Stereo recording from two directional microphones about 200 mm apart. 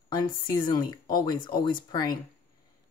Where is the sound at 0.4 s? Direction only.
25° left (ahead or behind).